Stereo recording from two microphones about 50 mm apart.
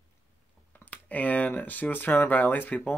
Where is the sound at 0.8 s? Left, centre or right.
Left.